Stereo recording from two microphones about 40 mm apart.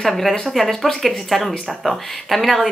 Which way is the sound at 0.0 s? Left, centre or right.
Centre.